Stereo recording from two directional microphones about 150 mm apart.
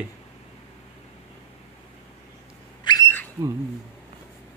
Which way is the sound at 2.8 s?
30° left (ahead or behind).